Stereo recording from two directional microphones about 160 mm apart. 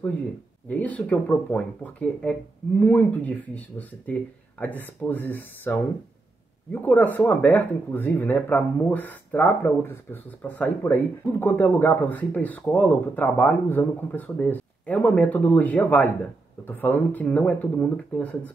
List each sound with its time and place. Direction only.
0.7 s speech: 10° left (ahead or behind)